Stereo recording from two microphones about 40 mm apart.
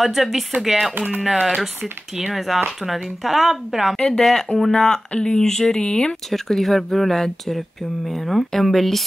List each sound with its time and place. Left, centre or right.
0.0 s speech: centre
0.9 s music: right
1.3 s speech: centre
3.9 s speech: centre
4.2 s speech: centre
5.1 s speech: left
5.4 s speech: centre
6.3 s speech: centre